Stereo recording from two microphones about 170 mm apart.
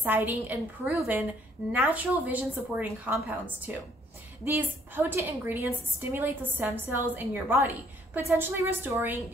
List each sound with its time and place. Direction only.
0.0 s a woman's voice: 10° right (ahead or behind)